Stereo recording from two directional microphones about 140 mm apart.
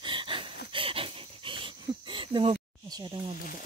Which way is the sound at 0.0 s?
35° right (ahead or behind).